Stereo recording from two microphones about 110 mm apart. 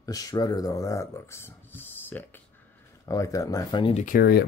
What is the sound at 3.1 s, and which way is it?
Speech, 30° left (ahead or behind).